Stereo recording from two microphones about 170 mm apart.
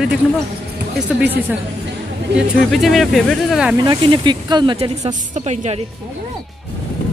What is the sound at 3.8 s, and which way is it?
Speech, 25° right (ahead or behind).